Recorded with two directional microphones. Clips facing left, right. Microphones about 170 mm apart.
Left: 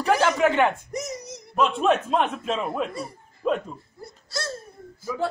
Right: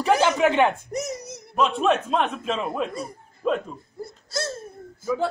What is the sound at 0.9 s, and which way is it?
Speech, 50° right (ahead or behind).